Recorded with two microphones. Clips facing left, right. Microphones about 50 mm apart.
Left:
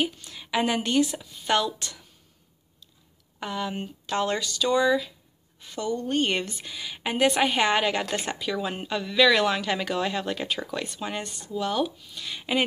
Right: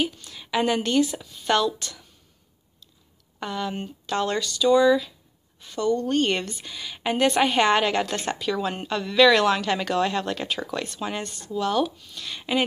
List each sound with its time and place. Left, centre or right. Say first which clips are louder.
0.0 s a woman's voice: right 1 dB; left
3.3 s a woman's voice: right 1 dB; centre
11.0 s speech: right 2 dB; centre
11.2 s a woman's voice: right 2 dB; left
11.6 s speech: right 3 dB; centre